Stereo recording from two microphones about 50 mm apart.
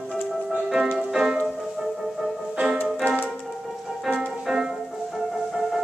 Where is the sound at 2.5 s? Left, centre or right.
Centre.